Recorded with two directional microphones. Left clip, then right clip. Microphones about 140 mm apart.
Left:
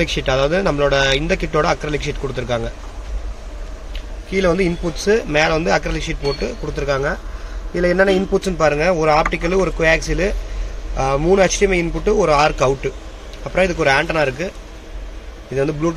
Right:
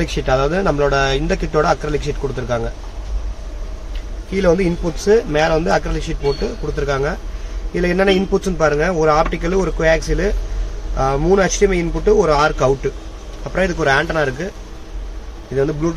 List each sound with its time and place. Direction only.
0.0 s a man's voice: 15° left (ahead or behind)
4.3 s speech: 20° left (ahead or behind)
15.5 s speech: 25° left (ahead or behind)